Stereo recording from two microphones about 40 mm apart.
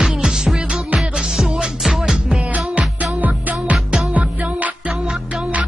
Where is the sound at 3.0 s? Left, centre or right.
Right.